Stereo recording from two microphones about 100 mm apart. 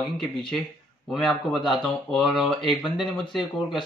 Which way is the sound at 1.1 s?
Centre (ahead or behind).